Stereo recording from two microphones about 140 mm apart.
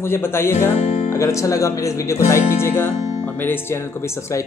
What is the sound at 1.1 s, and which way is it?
Speech, 20° left (ahead or behind).